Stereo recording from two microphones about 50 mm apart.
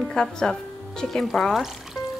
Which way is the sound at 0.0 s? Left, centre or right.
Centre.